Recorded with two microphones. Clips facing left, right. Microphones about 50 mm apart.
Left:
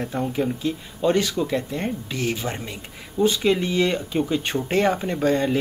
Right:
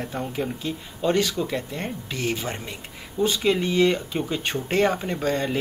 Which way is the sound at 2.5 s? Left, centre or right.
Centre.